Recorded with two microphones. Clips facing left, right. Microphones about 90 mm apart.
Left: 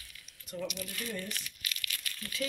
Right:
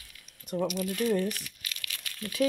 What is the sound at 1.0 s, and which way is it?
Speech, 75° right (ahead or behind).